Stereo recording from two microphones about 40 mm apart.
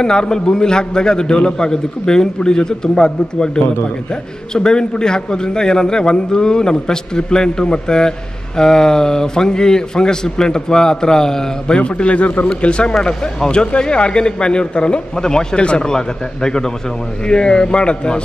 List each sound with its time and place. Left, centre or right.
0.0 s a man's voice: centre
11.9 s a man's voice: left